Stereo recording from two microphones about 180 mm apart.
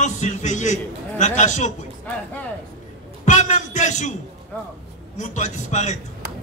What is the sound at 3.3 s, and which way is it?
Speech, 40° left (ahead or behind).